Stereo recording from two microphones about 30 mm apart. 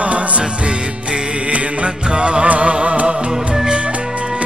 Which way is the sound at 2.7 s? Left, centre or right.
Right.